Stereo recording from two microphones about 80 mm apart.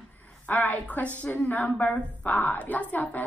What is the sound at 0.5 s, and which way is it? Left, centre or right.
A woman's voice, centre.